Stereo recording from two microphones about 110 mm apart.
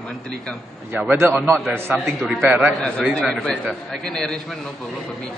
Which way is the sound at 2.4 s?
15° right (ahead or behind).